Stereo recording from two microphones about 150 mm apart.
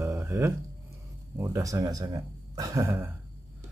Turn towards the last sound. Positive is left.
turn(degrees=-15)  # may be behind; listen again after turning